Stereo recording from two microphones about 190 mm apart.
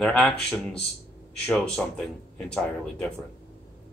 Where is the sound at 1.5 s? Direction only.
5° left (ahead or behind).